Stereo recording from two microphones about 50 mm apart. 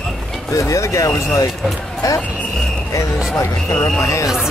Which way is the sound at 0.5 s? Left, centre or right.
Left.